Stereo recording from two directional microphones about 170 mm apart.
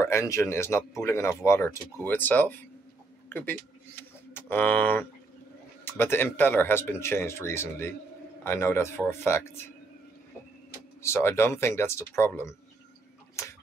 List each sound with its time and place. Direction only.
0.0 s a man's voice: 15° left (ahead or behind)
11.0 s speech: 15° left (ahead or behind)